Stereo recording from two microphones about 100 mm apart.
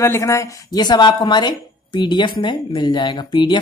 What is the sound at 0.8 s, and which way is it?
A woman's voice, 50° left (ahead or behind).